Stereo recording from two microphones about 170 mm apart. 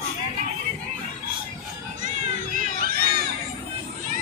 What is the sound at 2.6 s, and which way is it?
Crowd, 55° right (ahead or behind).